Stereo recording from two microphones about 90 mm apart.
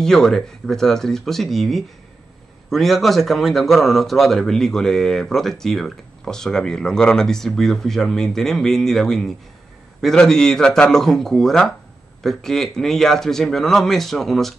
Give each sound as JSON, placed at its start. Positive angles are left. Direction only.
{"t": 0.0, "sound": "a man's voice", "side_deg": 5}